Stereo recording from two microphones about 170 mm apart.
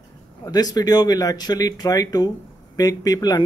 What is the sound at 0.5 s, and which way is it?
Speech, 20° left (ahead or behind).